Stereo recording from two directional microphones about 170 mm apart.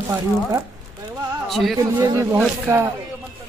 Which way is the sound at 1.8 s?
20° right (ahead or behind).